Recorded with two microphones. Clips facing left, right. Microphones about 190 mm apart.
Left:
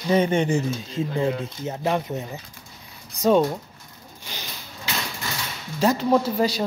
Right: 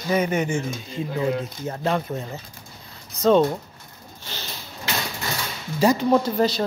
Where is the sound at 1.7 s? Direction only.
15° left (ahead or behind).